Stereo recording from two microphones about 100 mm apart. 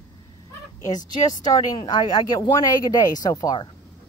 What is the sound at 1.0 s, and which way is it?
Speech, 40° left (ahead or behind).